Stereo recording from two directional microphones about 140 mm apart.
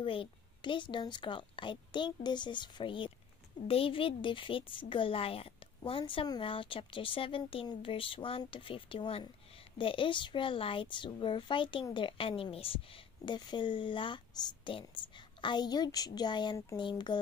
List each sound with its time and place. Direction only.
0.0 s a woman's voice: 40° left (ahead or behind)